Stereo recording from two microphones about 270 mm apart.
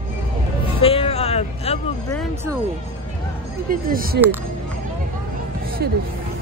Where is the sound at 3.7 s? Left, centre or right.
Right.